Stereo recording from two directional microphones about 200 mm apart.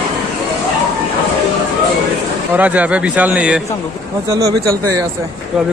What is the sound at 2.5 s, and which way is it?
Speech, 10° right (ahead or behind).